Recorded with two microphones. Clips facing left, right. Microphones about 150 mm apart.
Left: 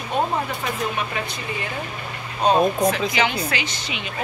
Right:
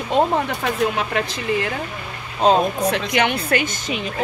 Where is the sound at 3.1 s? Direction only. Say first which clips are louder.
Right 4 dB; 60° right (ahead or behind).